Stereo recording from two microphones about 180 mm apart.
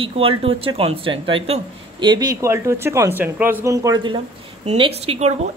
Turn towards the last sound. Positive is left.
turn(degrees=-35)  # may be behind; listen again after turning